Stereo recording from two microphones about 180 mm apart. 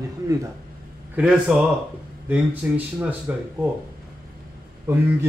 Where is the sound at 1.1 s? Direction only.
5° right (ahead or behind).